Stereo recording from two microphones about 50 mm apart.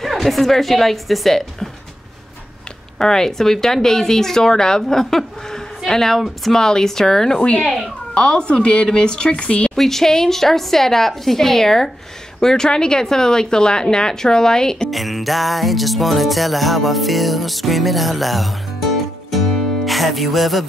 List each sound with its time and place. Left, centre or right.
0.0 s music: centre
3.0 s speech: centre
7.6 s music: centre
8.1 s speech: centre
9.8 s speech: centre
14.9 s music: centre